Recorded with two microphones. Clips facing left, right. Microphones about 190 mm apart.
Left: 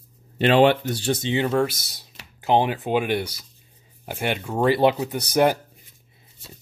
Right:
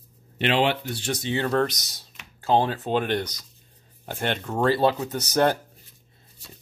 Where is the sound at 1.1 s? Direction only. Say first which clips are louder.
Left 1 dB; 20° left (ahead or behind).